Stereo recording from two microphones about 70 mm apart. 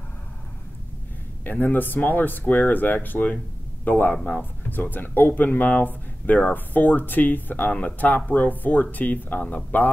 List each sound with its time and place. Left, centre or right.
1.4 s speech: left